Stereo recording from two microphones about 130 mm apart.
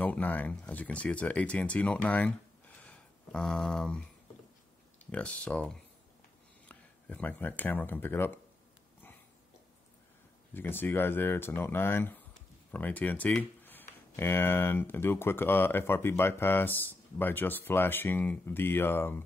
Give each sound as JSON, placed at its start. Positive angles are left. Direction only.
{"t": 0.0, "sound": "speech", "side_deg": 15}
{"t": 2.8, "sound": "a sound", "side_deg": 10}
{"t": 5.1, "sound": "speech", "side_deg": 10}
{"t": 10.5, "sound": "speech", "side_deg": 15}